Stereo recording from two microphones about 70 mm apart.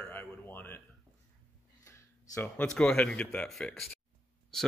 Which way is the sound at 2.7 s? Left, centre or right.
Centre.